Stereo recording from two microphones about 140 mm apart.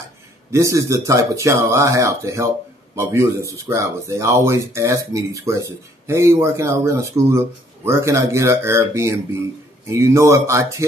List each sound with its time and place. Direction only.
0.5 s speech: 20° right (ahead or behind)